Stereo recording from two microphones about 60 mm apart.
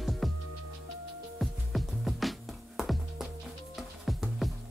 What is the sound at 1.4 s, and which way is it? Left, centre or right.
Music, centre.